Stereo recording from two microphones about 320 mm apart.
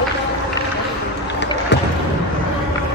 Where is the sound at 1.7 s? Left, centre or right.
Left.